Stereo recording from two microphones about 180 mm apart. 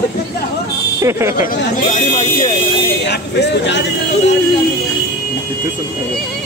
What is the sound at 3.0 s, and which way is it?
Speech, 70° left (ahead or behind).